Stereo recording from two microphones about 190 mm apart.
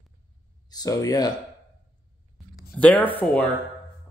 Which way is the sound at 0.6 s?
20° left (ahead or behind).